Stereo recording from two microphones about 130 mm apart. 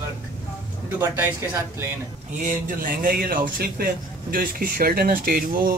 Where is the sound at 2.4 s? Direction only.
90° right.